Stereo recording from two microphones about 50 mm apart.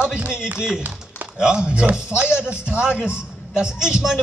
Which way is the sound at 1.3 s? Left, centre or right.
Centre.